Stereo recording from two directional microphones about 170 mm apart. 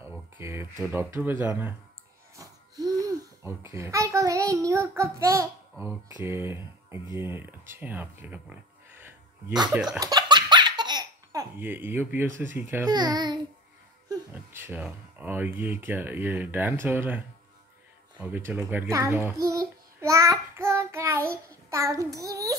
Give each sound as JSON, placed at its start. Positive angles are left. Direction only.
{"t": 0.4, "sound": "a child's voice", "side_deg": -15}
{"t": 2.3, "sound": "a sound", "side_deg": -20}
{"t": 3.7, "sound": "a child's voice", "side_deg": -15}
{"t": 9.8, "sound": "baby laughter", "side_deg": -25}
{"t": 11.5, "sound": "a child's voice", "side_deg": -10}
{"t": 12.9, "sound": "child singing", "side_deg": -25}
{"t": 14.3, "sound": "a child's voice", "side_deg": -10}
{"t": 18.1, "sound": "babbling", "side_deg": -10}
{"t": 21.6, "sound": "child singing", "side_deg": -20}